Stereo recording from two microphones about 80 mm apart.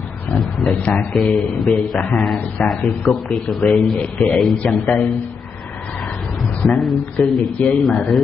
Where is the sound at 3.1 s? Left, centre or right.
Centre.